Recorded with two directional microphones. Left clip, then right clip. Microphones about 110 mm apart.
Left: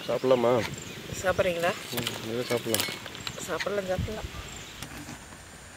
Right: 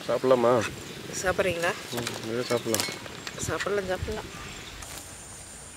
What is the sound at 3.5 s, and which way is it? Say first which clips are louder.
Speech: right 1 dB; 40° right (ahead or behind).